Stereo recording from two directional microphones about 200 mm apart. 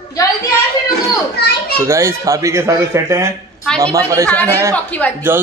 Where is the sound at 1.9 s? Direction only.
15° right (ahead or behind).